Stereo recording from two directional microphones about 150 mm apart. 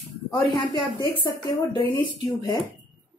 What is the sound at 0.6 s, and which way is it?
Speech, 30° left (ahead or behind).